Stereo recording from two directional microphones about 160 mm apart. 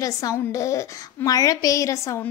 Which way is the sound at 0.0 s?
20° left (ahead or behind).